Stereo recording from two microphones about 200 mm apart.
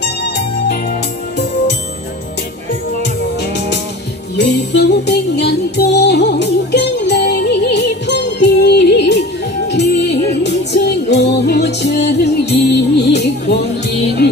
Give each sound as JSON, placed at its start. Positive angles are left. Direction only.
{"t": 4.4, "sound": "music", "side_deg": 55}